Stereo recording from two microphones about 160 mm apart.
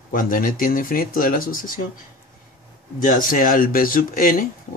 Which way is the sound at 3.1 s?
60° left (ahead or behind).